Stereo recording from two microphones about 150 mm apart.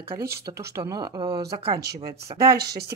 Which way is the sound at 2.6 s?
90° right.